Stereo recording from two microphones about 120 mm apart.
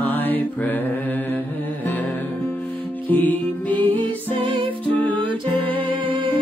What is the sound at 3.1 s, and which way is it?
Music, 15° left (ahead or behind).